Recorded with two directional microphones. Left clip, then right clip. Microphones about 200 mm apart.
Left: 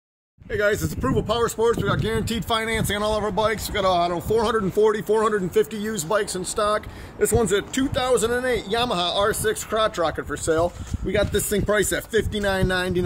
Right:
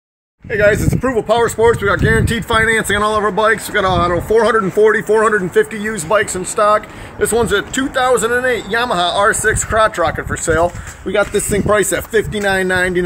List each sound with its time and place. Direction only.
0.5 s speech: 55° left (ahead or behind)